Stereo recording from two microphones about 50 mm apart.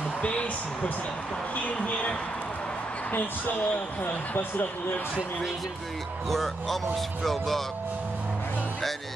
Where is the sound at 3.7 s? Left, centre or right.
Left.